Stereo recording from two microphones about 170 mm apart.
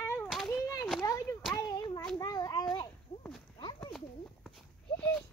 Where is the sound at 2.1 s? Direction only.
25° left (ahead or behind).